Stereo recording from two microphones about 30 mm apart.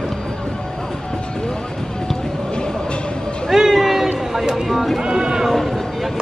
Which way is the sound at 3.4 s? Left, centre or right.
Centre.